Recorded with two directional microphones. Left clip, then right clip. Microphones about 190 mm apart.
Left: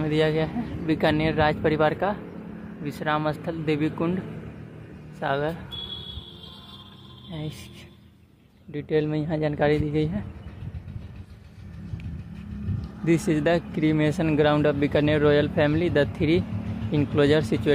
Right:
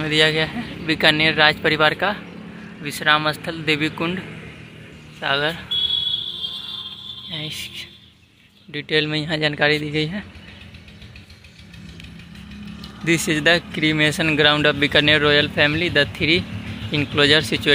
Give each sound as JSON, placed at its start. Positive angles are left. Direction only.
{"t": 0.0, "sound": "speech", "side_deg": 5}
{"t": 5.2, "sound": "speech", "side_deg": 5}
{"t": 7.2, "sound": "speech", "side_deg": 20}
{"t": 8.7, "sound": "speech", "side_deg": 5}
{"t": 12.8, "sound": "speech", "side_deg": 10}